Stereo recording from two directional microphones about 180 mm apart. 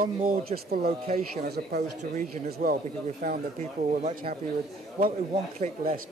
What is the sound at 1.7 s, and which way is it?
Speech, 50° right (ahead or behind).